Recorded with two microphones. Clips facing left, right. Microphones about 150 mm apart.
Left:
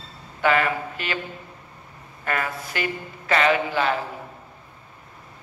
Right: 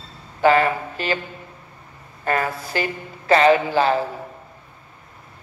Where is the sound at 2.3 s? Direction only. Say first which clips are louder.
Right 5 dB; 35° right (ahead or behind).